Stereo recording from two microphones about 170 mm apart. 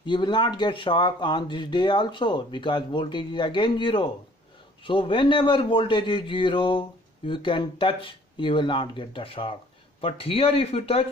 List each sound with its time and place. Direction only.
0.0 s a man's voice: 25° left (ahead or behind)